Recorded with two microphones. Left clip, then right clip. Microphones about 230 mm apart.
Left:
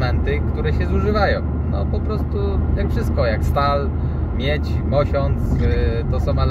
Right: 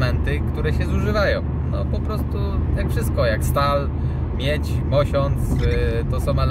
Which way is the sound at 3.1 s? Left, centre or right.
Centre.